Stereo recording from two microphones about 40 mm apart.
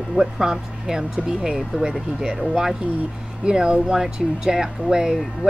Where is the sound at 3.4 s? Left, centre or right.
Right.